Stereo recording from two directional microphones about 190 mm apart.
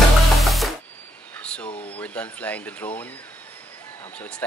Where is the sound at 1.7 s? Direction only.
30° left (ahead or behind).